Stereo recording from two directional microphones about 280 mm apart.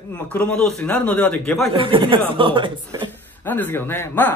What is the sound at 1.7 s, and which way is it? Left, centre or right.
Speech, centre.